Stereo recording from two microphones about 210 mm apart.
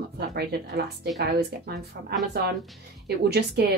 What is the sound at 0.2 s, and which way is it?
A woman's voice, 50° right (ahead or behind).